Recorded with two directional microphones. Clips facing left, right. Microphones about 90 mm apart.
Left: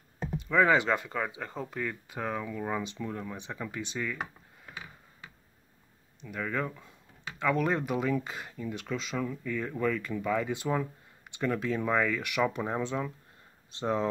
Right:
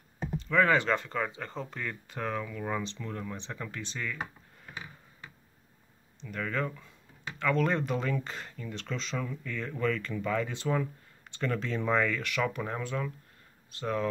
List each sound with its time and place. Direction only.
0.4 s speech: 15° left (ahead or behind)
6.2 s speech: 10° left (ahead or behind)